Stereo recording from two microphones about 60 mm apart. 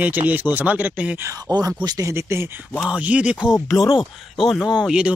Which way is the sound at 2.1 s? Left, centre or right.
Right.